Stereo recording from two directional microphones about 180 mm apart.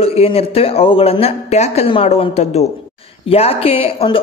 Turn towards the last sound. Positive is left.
turn(degrees=30)  # may be behind; listen again after turning